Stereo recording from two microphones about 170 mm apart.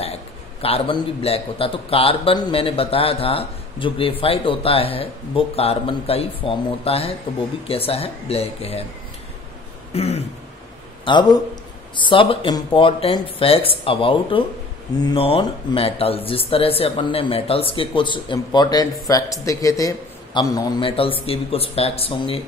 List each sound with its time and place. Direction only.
0.0 s a man's voice: 35° left (ahead or behind)
9.9 s a man's voice: 40° left (ahead or behind)
11.1 s a man's voice: 25° left (ahead or behind)